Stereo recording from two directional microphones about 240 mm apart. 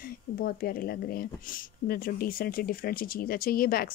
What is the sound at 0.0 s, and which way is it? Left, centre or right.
Speech, left.